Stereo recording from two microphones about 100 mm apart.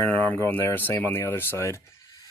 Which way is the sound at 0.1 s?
15° left (ahead or behind).